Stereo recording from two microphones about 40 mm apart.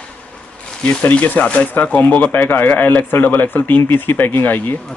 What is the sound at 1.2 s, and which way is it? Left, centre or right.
Speech, left.